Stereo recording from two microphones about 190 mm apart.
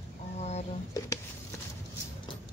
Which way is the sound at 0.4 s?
35° left (ahead or behind).